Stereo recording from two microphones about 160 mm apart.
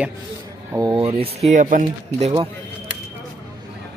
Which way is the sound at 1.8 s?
40° right (ahead or behind).